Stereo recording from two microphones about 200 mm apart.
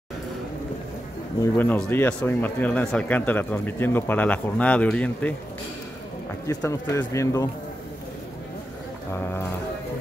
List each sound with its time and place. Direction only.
1.4 s a man's voice: 10° left (ahead or behind)
6.4 s a man's voice: 15° left (ahead or behind)
9.1 s a man's voice: 10° left (ahead or behind)